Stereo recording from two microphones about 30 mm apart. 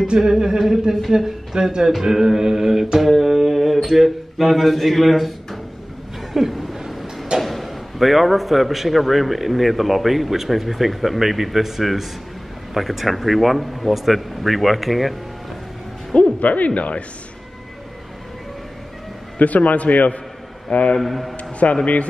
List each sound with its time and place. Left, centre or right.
0.2 s speech: centre
3.0 s mantra: centre
6.3 s speech: centre
6.7 s a sound: centre
7.3 s speech: centre
16.3 s speech: left
19.3 s a man's voice: left
21.0 s speech: centre
21.6 s a man's voice: left